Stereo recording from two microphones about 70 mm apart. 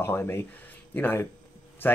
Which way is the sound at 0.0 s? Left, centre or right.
Left.